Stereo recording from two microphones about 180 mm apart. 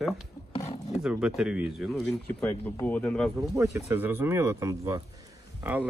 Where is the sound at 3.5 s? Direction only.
15° right (ahead or behind).